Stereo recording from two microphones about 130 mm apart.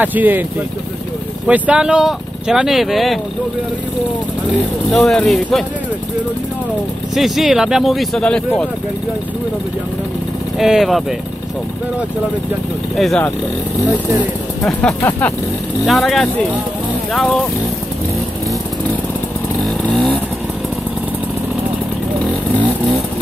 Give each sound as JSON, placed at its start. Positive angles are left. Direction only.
{"t": 0.0, "sound": "speech", "side_deg": -15}
{"t": 1.5, "sound": "speech", "side_deg": -5}
{"t": 4.9, "sound": "speech", "side_deg": 5}
{"t": 7.2, "sound": "speech", "side_deg": 0}
{"t": 10.6, "sound": "speech", "side_deg": 0}
{"t": 12.9, "sound": "speech", "side_deg": 0}
{"t": 14.6, "sound": "speech", "side_deg": 10}
{"t": 15.8, "sound": "speech", "side_deg": 0}
{"t": 19.8, "sound": "vehicle", "side_deg": 5}